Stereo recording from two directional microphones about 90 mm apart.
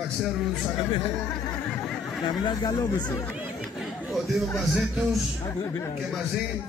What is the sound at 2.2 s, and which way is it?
Speech, 60° left (ahead or behind).